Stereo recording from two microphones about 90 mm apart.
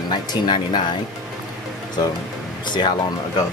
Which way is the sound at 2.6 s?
55° left (ahead or behind).